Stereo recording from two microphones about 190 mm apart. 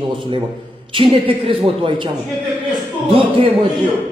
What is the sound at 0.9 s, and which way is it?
Speech, 30° right (ahead or behind).